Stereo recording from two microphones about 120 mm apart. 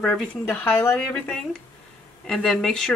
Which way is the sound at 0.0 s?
Centre (ahead or behind).